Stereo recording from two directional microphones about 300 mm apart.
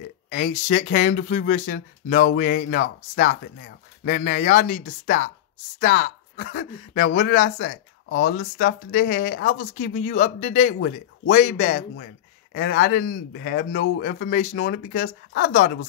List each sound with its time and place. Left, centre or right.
0.3 s speech: left